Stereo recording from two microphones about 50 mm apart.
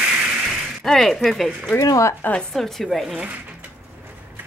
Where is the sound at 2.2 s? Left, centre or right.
Left.